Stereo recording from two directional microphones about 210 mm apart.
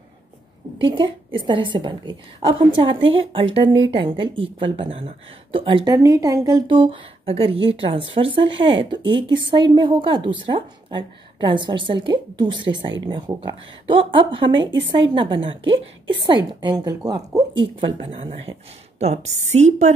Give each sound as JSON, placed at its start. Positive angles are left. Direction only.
{"t": 0.7, "sound": "a woman's voice", "side_deg": -25}